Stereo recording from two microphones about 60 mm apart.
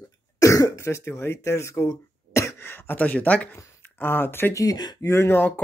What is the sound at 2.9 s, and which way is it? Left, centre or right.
Speech, left.